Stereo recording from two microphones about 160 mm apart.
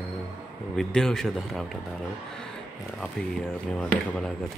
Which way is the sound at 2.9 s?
5° left (ahead or behind).